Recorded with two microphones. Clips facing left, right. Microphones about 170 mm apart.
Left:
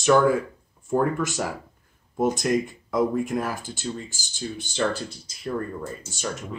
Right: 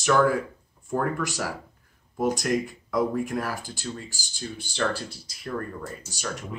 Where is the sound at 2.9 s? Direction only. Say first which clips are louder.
Left 2 dB; 20° left (ahead or behind).